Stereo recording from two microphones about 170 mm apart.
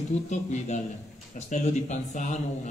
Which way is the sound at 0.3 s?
45° left (ahead or behind).